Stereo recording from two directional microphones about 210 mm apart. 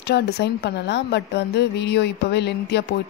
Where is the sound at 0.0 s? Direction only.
55° left (ahead or behind).